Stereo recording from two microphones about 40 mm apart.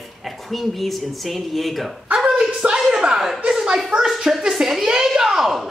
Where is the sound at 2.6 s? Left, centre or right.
Right.